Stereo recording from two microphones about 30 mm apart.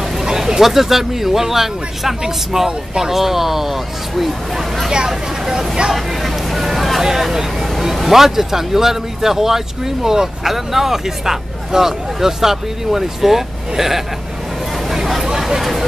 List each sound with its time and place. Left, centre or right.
0.2 s speech: centre
4.9 s speech: right
5.9 s speech: centre
14.9 s chatter: centre
15.2 s a sound: centre